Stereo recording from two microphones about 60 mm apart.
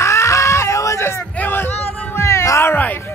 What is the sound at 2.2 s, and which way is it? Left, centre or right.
Cat, left.